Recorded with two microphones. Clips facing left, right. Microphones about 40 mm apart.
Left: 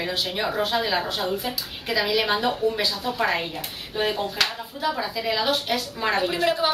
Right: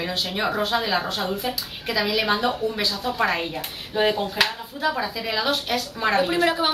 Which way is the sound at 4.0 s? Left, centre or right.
Centre.